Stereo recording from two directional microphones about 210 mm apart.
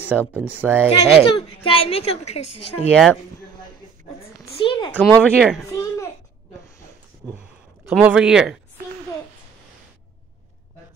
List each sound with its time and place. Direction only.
0.3 s speech: 10° right (ahead or behind)
0.8 s a woman's voice: 25° left (ahead or behind)
2.9 s speech: 5° left (ahead or behind)
4.6 s a woman's voice: 20° left (ahead or behind)
4.9 s speech: 10° left (ahead or behind)
5.7 s a child's voice: 15° left (ahead or behind)
7.2 s a sound: 15° right (ahead or behind)
7.9 s speech: 5° right (ahead or behind)